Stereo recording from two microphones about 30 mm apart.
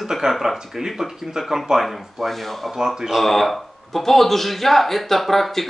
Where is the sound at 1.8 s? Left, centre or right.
Centre.